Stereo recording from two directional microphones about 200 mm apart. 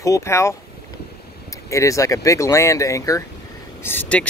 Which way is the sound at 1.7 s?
15° left (ahead or behind).